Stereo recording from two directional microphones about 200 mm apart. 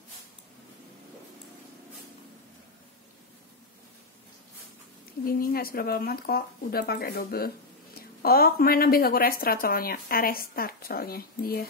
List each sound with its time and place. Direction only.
5.2 s speech: 50° left (ahead or behind)